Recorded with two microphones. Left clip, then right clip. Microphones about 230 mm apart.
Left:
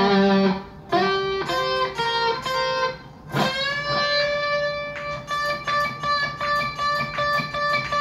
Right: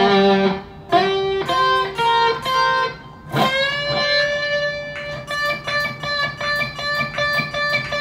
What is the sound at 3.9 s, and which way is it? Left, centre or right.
Music, right.